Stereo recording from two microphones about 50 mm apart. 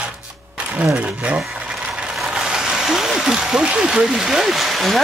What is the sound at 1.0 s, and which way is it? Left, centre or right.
Speech, right.